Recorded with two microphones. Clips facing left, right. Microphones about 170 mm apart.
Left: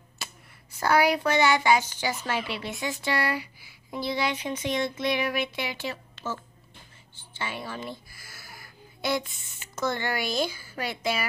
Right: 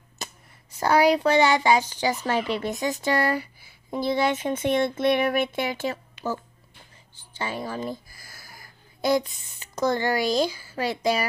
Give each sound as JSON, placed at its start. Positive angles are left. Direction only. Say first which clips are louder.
{"t": 0.2, "sound": "a sound", "louder": "right 4 dB", "side_deg": -40}
{"t": 0.7, "sound": "a child's voice", "louder": "right 3 dB", "side_deg": -35}
{"t": 7.3, "sound": "a child's voice", "louder": "right 5 dB", "side_deg": -40}
{"t": 9.0, "sound": "a child's voice", "louder": "right 6 dB", "side_deg": -35}